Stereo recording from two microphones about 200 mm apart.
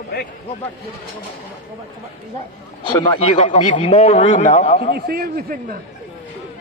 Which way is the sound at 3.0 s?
30° left (ahead or behind).